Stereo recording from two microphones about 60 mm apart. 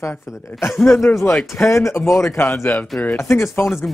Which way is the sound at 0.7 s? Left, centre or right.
Centre.